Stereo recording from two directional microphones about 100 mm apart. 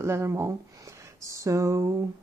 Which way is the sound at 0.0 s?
25° right (ahead or behind).